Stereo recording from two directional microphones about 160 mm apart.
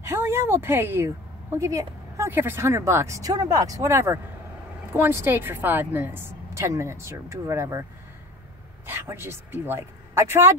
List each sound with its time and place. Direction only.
0.0 s a woman's voice: 15° right (ahead or behind)
8.8 s a woman's voice: 15° right (ahead or behind)